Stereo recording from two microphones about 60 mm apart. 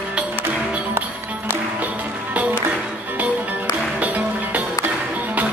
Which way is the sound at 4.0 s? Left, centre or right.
Right.